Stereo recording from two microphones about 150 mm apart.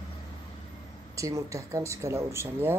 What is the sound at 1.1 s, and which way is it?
Speech, 20° right (ahead or behind).